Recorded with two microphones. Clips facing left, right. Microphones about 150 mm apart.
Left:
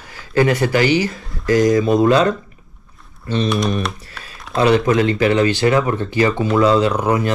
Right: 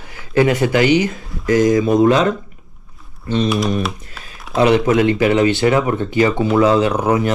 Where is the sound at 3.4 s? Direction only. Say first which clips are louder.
Even; centre (ahead or behind).